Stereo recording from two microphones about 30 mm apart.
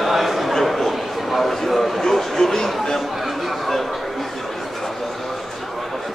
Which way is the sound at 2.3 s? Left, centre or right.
Centre.